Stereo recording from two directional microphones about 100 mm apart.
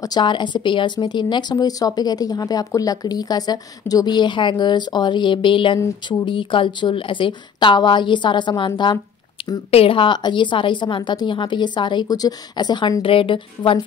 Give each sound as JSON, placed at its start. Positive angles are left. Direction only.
{"t": 0.0, "sound": "speech", "side_deg": 45}
{"t": 9.7, "sound": "speech", "side_deg": 70}
{"t": 13.0, "sound": "a woman's voice", "side_deg": 60}